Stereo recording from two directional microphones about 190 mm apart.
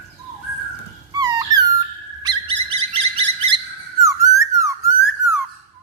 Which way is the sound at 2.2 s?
25° right (ahead or behind).